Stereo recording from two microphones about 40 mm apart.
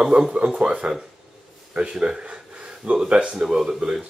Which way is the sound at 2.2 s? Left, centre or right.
Right.